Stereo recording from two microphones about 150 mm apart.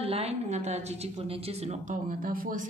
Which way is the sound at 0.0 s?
45° right (ahead or behind).